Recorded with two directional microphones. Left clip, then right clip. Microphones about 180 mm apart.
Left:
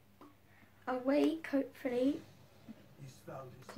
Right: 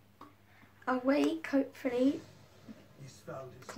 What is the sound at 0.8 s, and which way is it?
A woman's voice, 15° right (ahead or behind).